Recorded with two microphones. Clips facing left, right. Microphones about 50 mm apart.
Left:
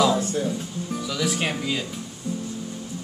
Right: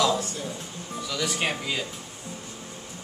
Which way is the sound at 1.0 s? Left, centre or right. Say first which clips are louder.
Left 1 dB; centre.